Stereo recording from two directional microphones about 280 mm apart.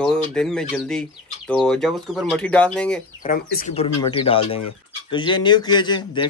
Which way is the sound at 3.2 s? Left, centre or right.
Left.